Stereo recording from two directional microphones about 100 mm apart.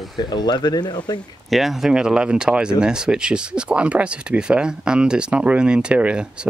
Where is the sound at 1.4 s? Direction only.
Centre (ahead or behind).